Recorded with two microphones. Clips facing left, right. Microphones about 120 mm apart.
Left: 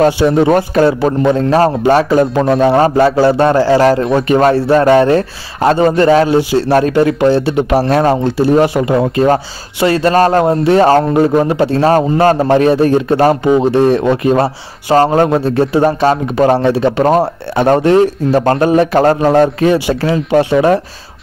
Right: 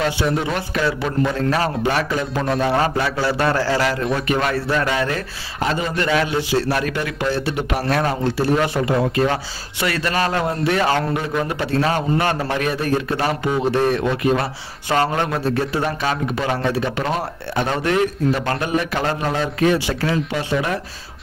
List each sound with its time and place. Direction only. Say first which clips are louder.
0.2 s a man's voice: left 10 dB; 30° left (ahead or behind)
0.5 s a man's voice: left 12 dB; 45° left (ahead or behind)
1.3 s a man's voice: left 9 dB; 30° left (ahead or behind); by 3.3 s 45° left (ahead or behind)
3.5 s speech: left 10 dB; 20° left (ahead or behind)
3.8 s a man's voice: left 10 dB; 30° left (ahead or behind); by 5.9 s 50° left (ahead or behind)
5.9 s a man's voice: left 11 dB; 35° left (ahead or behind)
15.8 s a man's voice: left 10 dB; 40° left (ahead or behind)
16.6 s a man's voice: left 10 dB; 30° left (ahead or behind); by 19.5 s 45° left (ahead or behind)
19.6 s a man's voice: left 6 dB; 35° left (ahead or behind)
20.2 s a man's voice: left 12 dB; 45° left (ahead or behind)